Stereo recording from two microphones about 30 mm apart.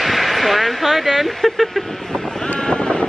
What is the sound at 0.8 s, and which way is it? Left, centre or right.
Speech, centre.